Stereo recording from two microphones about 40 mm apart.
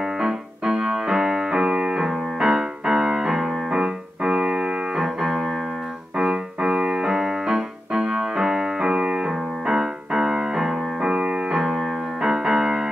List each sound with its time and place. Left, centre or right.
0.0 s music: centre